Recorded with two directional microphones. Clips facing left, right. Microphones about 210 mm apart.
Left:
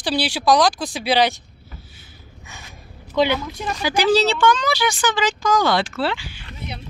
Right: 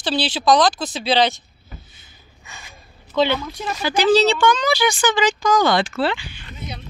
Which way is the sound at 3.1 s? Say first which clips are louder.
Even; 10° left (ahead or behind).